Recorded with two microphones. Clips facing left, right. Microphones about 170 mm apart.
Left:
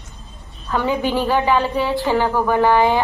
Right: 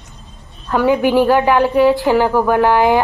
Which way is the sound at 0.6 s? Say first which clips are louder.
Right 6 dB; 15° right (ahead or behind).